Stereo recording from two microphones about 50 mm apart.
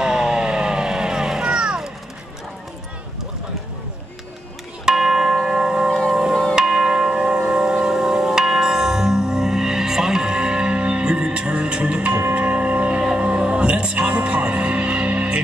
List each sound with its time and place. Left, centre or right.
0.0 s vehicle: centre
4.8 s music: centre
6.5 s tubular bells: centre
13.2 s music: right